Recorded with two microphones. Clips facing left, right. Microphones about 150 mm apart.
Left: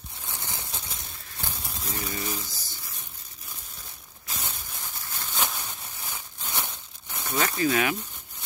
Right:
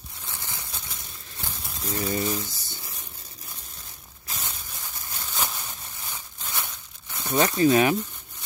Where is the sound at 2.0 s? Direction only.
35° right (ahead or behind).